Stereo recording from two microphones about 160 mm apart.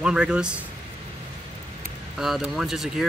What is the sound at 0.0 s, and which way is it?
Speech, 5° right (ahead or behind).